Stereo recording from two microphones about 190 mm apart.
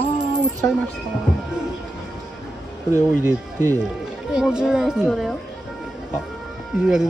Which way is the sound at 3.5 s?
20° right (ahead or behind).